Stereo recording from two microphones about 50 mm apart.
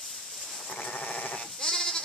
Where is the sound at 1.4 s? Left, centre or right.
Centre.